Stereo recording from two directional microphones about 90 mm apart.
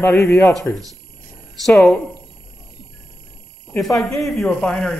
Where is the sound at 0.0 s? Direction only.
20° left (ahead or behind).